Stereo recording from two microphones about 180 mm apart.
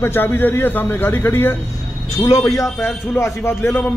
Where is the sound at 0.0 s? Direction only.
10° left (ahead or behind).